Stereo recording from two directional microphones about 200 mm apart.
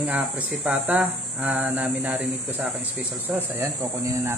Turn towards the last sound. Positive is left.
turn(degrees=-15)  # may be behind; listen again after turning